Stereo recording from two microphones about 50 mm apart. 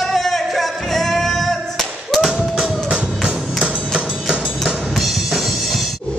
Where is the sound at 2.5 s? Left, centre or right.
Centre.